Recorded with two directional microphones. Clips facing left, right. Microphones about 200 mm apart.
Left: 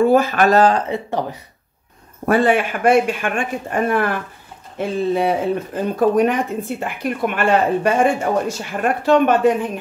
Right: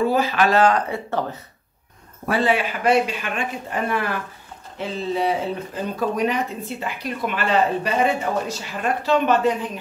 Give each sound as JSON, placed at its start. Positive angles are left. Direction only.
{"t": 0.0, "sound": "speech", "side_deg": 50}
{"t": 0.8, "sound": "speech", "side_deg": 20}
{"t": 2.2, "sound": "speech", "side_deg": 50}